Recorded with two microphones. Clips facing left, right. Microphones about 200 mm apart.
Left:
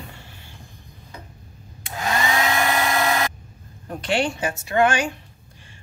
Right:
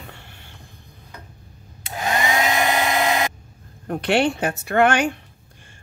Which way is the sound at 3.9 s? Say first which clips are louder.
Right 4 dB; 60° right (ahead or behind).